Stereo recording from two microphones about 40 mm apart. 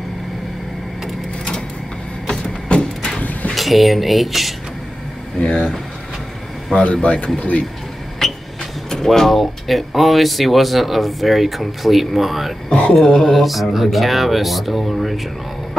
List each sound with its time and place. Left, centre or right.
2.7 s a sound: left
3.5 s speech: centre
5.4 s speech: left
6.7 s a man's voice: left
8.2 s a sound: centre
8.9 s speech: centre
9.3 s speech: centre
12.6 s speech: left
12.9 s speech: centre
13.3 s speech: centre